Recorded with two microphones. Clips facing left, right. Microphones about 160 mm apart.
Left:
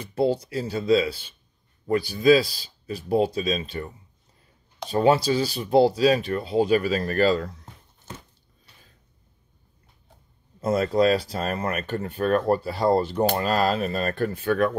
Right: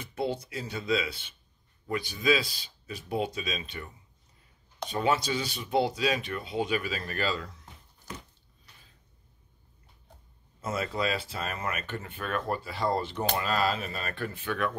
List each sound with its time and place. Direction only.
0.0 s speech: 30° left (ahead or behind)
10.6 s speech: 40° left (ahead or behind)